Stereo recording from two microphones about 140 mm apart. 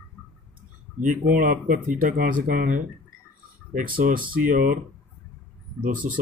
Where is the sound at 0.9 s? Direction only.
75° right (ahead or behind).